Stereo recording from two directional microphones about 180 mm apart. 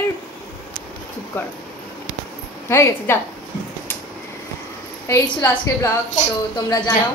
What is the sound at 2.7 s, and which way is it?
Speech, 15° left (ahead or behind).